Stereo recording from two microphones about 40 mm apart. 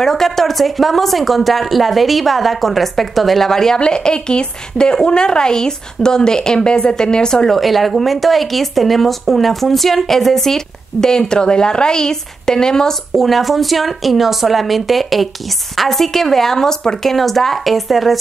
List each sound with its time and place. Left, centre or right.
0.0 s speech: centre
3.8 s speech: left
7.4 s speech: centre
13.1 s a woman's voice: centre
17.1 s speech: centre